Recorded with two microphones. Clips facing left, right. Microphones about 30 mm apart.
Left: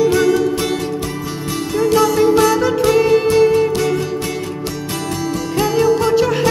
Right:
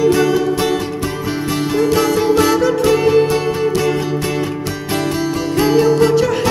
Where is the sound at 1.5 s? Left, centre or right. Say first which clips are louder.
Even; centre.